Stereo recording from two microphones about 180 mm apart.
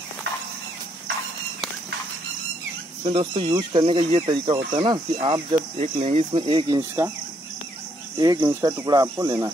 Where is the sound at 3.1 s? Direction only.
30° right (ahead or behind).